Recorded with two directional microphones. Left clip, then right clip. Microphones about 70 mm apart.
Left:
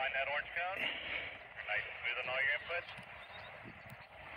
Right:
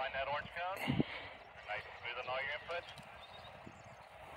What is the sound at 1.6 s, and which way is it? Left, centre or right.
Vehicle, centre.